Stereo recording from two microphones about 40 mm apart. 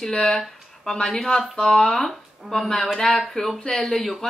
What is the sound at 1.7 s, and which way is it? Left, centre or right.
A woman's voice, centre.